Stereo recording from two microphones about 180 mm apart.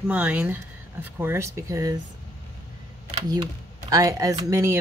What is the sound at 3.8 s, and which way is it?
Speech, 20° right (ahead or behind).